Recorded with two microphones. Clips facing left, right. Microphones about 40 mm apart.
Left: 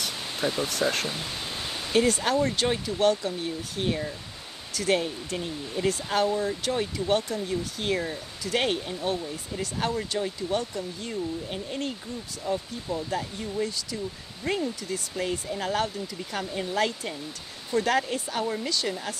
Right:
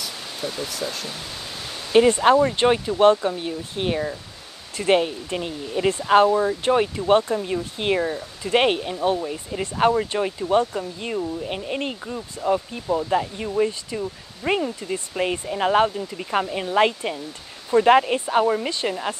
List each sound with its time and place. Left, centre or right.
0.4 s speech: left
1.9 s speech: right